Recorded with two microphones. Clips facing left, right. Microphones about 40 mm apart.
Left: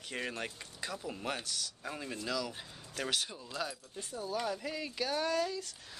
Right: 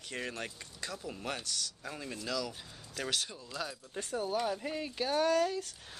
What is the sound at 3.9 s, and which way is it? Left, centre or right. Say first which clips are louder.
Speech: right 6 dB; right.